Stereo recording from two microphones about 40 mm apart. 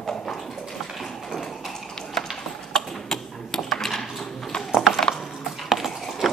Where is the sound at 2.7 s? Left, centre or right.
Centre.